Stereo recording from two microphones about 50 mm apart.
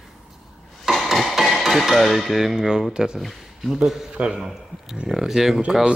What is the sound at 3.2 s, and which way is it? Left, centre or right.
Speech, centre.